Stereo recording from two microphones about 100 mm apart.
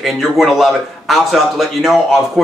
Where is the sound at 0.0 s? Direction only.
Centre (ahead or behind).